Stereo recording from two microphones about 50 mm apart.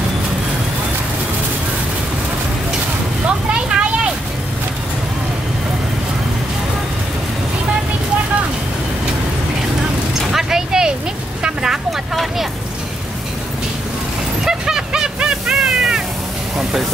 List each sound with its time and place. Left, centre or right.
3.5 s a sound: right
10.3 s vehicle: centre
14.4 s vehicle: centre